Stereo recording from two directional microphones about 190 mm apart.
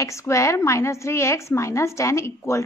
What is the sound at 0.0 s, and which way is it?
A woman's voice, 15° left (ahead or behind).